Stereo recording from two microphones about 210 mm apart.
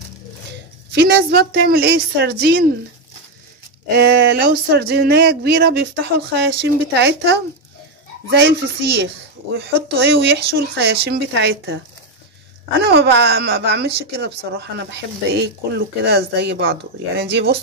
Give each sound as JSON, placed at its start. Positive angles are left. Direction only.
{"t": 0.9, "sound": "a woman's voice", "side_deg": -50}
{"t": 3.9, "sound": "a woman's voice", "side_deg": -50}